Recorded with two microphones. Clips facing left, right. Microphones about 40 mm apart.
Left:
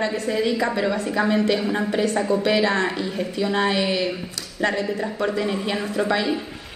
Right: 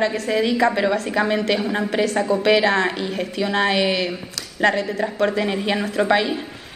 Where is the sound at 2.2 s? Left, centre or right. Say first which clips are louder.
Right 2 dB; right.